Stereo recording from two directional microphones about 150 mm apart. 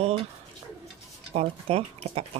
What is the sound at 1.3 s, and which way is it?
Speech, 40° right (ahead or behind).